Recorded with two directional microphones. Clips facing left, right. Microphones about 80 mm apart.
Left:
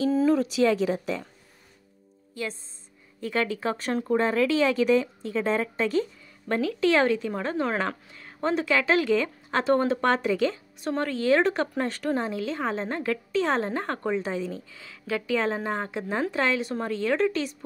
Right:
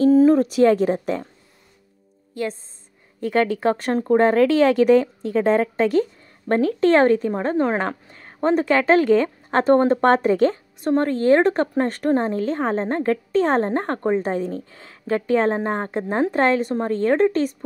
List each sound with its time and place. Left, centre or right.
0.0 s speech: right
3.2 s a woman's voice: right